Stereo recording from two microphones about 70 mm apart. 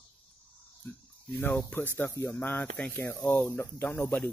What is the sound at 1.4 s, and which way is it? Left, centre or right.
Speech, left.